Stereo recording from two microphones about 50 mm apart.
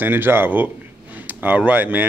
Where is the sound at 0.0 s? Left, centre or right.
Right.